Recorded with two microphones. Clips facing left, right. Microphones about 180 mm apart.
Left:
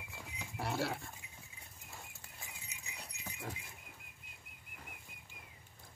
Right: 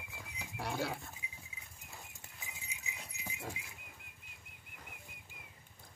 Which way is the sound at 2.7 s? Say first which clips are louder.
Right 2 dB; 5° right (ahead or behind).